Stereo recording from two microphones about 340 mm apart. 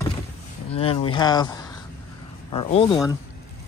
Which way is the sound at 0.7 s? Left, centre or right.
Centre.